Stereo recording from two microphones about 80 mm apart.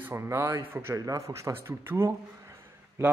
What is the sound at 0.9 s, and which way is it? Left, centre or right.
A man's voice, right.